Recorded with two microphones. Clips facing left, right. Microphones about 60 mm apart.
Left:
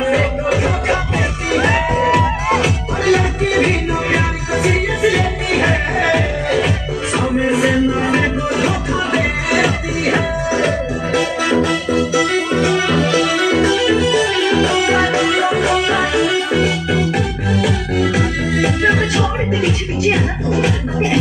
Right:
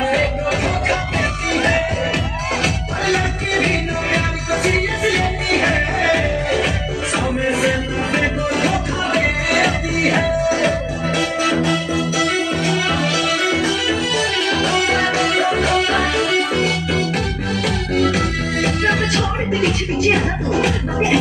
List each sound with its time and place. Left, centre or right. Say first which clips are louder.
0.1 s music: left 2 dB; centre
2.5 s music: left 4 dB; centre
11.5 s music: left 3 dB; centre
12.2 s organ: left 3 dB; left
13.1 s music: left 4 dB; left
13.6 s music: left 5 dB; centre
15.1 s music: left 2 dB; centre
20.2 s music: left 1 dB; centre